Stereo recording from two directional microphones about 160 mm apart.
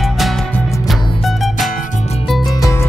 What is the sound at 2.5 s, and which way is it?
Music, 20° left (ahead or behind).